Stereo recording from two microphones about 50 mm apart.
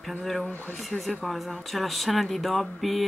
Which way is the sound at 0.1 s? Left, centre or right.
Centre.